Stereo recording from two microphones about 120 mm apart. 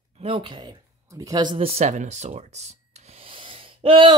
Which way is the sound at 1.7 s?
70° right (ahead or behind).